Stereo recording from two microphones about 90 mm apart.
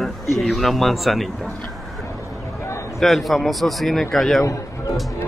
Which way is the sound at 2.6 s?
35° left (ahead or behind).